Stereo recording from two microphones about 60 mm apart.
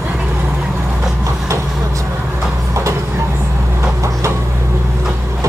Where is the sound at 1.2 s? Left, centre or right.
Right.